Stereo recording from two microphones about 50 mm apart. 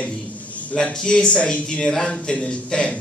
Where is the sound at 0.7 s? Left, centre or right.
Centre.